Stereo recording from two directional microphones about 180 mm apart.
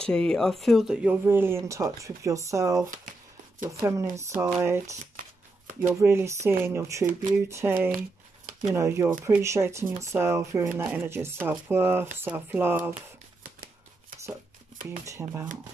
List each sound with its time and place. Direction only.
0.0 s speech: 5° left (ahead or behind); by 12.9 s 10° right (ahead or behind)
14.9 s speech: 15° right (ahead or behind)